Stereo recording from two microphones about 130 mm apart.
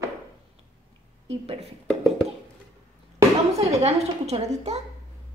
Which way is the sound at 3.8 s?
55° right (ahead or behind).